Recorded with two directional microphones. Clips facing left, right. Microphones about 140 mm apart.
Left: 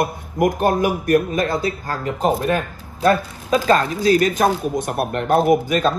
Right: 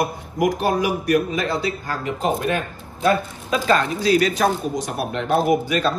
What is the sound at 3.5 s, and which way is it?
A man's voice, 45° left (ahead or behind).